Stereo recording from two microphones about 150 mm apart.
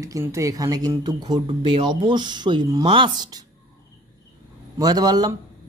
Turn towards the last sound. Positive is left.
turn(degrees=-25)  # may be behind; listen again after turning